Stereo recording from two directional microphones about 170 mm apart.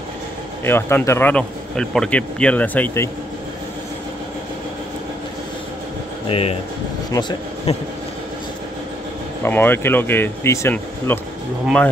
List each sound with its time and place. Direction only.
0.7 s speech: 15° left (ahead or behind)
6.2 s a man's voice: 35° left (ahead or behind)
9.4 s speech: 10° left (ahead or behind)